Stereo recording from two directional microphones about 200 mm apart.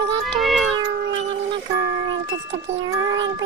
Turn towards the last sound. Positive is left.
turn(degrees=-15)  # may be behind; listen again after turning